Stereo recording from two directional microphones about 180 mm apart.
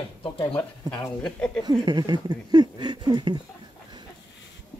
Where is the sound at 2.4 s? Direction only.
25° right (ahead or behind).